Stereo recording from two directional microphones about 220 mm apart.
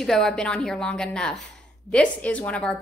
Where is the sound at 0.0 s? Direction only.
Centre (ahead or behind).